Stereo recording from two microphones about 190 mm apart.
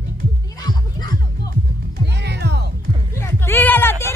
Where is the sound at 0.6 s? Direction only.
20° left (ahead or behind).